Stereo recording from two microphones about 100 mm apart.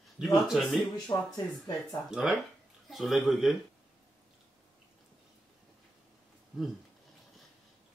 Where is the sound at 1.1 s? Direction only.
35° left (ahead or behind).